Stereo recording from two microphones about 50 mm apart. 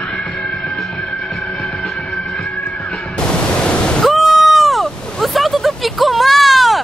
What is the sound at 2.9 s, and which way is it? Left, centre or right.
Music, centre.